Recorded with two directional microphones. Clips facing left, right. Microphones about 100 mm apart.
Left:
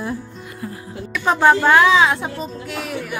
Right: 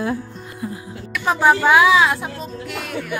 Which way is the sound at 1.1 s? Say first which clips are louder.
Left 1 dB; 5° right (ahead or behind).